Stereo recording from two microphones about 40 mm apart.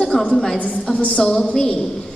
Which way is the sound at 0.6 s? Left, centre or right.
Left.